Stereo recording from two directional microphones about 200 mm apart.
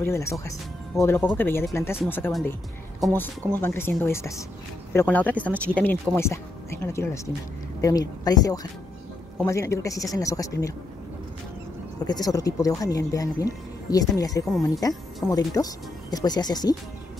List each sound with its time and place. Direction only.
0.0 s speech: 15° left (ahead or behind)
12.1 s speech: 20° left (ahead or behind)